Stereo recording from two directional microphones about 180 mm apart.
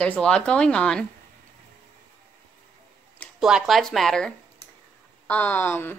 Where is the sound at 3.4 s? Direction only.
Centre (ahead or behind).